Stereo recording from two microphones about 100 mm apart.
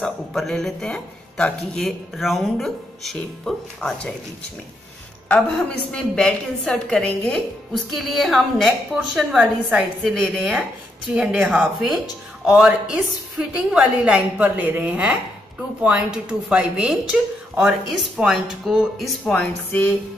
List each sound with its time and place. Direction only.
0.0 s speech: 5° left (ahead or behind)
5.9 s a woman's voice: 5° left (ahead or behind)
19.3 s a woman's voice: 15° left (ahead or behind)